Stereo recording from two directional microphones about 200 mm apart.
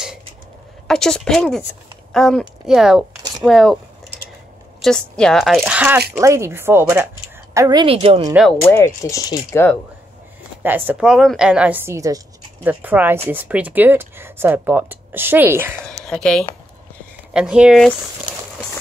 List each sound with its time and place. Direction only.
0.8 s speech: 5° left (ahead or behind)
4.8 s a woman's voice: 5° left (ahead or behind); by 8.3 s 30° right (ahead or behind)
8.3 s speech: 5° right (ahead or behind)
8.6 s speech: 15° left (ahead or behind)
10.6 s speech: 10° right (ahead or behind)
16.0 s a woman's voice: centre (ahead or behind)